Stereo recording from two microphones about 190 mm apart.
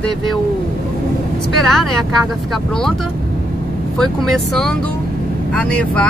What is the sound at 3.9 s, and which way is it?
Speech, centre (ahead or behind).